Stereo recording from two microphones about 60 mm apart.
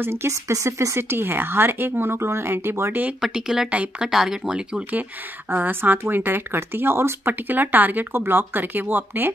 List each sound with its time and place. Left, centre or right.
0.0 s speech: right
0.3 s speech: right
3.2 s speech: centre
5.5 s speech: right